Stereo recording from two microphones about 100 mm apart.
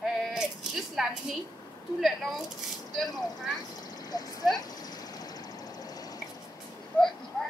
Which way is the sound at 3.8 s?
40° left (ahead or behind).